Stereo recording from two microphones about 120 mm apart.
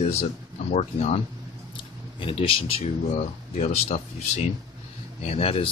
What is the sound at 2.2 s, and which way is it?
Speech, 50° left (ahead or behind).